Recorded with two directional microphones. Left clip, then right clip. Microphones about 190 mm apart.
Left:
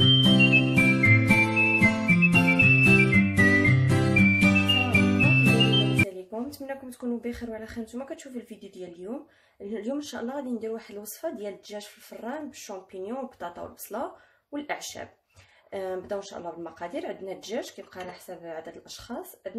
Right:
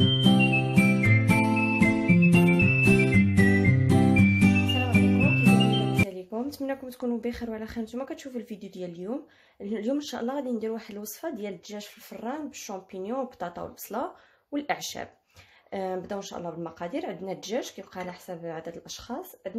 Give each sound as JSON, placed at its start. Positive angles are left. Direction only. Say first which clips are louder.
{"t": 0.0, "sound": "music", "louder": "left 4 dB", "side_deg": 0}
{"t": 6.5, "sound": "a sound", "louder": "right 4 dB", "side_deg": -45}
{"t": 7.2, "sound": "speech", "louder": "right 2 dB", "side_deg": -50}
{"t": 9.7, "sound": "speech", "louder": "right 3 dB", "side_deg": -45}
{"t": 12.3, "sound": "speech", "louder": "right 1 dB", "side_deg": -40}